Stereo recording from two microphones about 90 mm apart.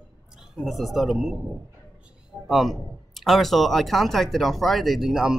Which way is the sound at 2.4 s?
Centre (ahead or behind).